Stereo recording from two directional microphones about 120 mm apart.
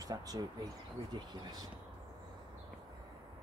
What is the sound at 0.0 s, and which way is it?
Speech, 30° right (ahead or behind).